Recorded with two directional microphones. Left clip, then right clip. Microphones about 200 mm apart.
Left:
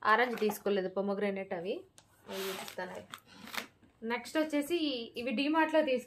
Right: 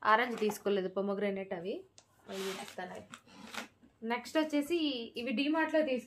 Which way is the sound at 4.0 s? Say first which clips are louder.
Even; centre (ahead or behind).